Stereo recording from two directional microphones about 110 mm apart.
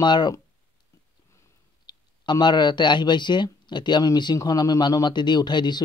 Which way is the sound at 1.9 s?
40° left (ahead or behind).